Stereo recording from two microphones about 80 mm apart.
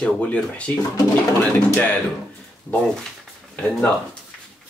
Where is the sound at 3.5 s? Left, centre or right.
Centre.